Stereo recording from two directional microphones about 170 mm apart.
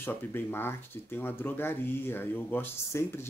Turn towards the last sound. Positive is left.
turn(degrees=15)  # may be behind; listen again after turning